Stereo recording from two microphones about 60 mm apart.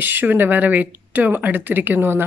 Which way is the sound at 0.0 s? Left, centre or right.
Right.